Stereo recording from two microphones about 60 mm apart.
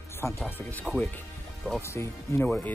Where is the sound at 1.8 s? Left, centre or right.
Left.